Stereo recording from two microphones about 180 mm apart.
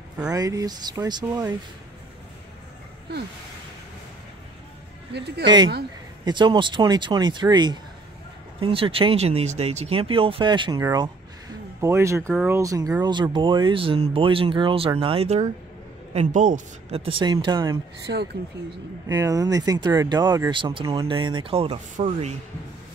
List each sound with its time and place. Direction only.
0.3 s speech: 20° right (ahead or behind)
5.4 s speech: 25° right (ahead or behind)
18.0 s speech: 65° right (ahead or behind)
19.0 s speech: 20° right (ahead or behind)
21.9 s speech: 45° right (ahead or behind)